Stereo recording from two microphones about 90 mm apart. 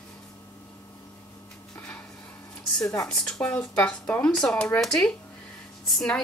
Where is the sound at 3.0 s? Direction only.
5° left (ahead or behind).